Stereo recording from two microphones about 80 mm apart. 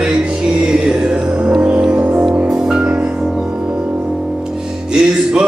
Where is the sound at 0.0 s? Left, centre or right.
Centre.